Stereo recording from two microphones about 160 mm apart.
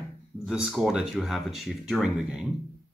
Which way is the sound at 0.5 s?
5° right (ahead or behind).